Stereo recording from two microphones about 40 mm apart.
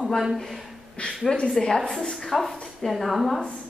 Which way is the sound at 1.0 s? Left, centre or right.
Left.